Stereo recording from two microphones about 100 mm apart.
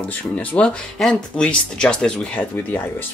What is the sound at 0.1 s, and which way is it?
Speech, 15° left (ahead or behind).